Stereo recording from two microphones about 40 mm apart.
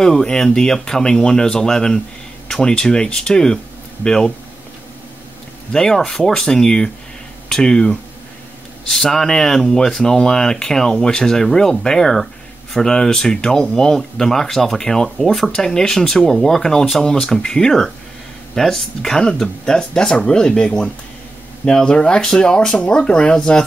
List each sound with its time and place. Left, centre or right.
0.0 s speech: centre
5.7 s speech: centre
15.5 s speech: centre